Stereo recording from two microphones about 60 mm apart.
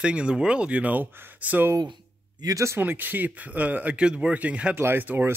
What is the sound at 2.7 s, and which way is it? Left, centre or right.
Speech, right.